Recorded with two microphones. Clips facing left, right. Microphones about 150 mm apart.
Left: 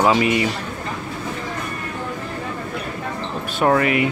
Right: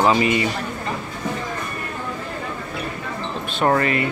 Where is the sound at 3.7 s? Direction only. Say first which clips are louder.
Left 2 dB; 10° left (ahead or behind).